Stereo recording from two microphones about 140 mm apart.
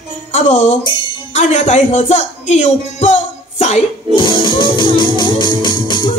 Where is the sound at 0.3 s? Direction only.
55° left (ahead or behind).